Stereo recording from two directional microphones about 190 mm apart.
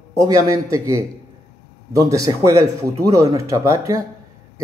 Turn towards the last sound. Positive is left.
turn(degrees=-15)  # may be behind; listen again after turning